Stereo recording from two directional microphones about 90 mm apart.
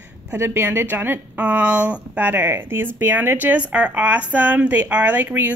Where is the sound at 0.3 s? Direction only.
30° right (ahead or behind).